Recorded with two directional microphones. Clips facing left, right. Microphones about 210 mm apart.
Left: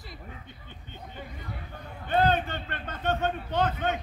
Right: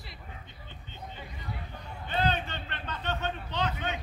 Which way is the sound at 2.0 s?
50° left (ahead or behind).